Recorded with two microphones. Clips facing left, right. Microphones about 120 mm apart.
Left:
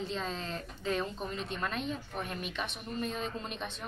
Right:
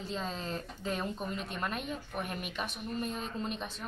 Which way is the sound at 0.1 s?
5° right (ahead or behind).